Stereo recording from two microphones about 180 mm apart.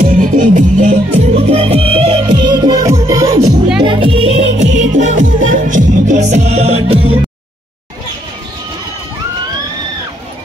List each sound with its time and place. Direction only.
0.0 s music: 50° right (ahead or behind)